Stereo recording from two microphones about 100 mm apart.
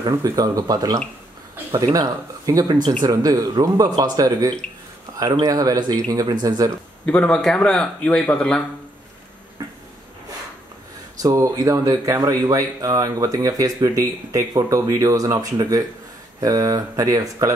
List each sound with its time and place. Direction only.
0.0 s speech: 40° right (ahead or behind)
7.1 s speech: 10° left (ahead or behind)
9.6 s a sound: 35° right (ahead or behind)
11.2 s speech: 35° right (ahead or behind)